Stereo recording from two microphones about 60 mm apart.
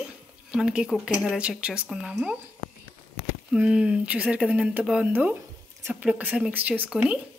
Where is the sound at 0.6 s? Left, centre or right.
Centre.